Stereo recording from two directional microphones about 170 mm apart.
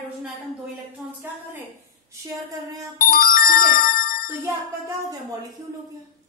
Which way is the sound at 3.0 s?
60° left (ahead or behind).